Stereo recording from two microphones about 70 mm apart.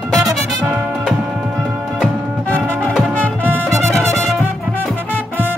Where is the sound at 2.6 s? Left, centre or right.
Centre.